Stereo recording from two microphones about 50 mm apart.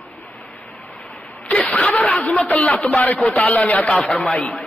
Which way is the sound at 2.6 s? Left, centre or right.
Left.